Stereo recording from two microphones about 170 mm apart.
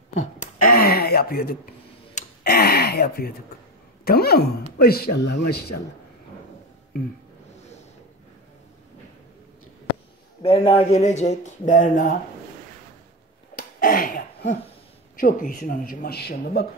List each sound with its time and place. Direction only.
0.1 s a sound: 45° left (ahead or behind); by 1.6 s 60° left (ahead or behind)
2.4 s speech: 65° left (ahead or behind)
10.4 s speech: 35° left (ahead or behind)
13.6 s cough: 55° left (ahead or behind)
15.1 s speech: 55° left (ahead or behind)